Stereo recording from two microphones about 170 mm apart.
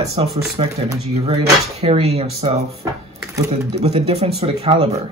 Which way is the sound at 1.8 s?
35° right (ahead or behind).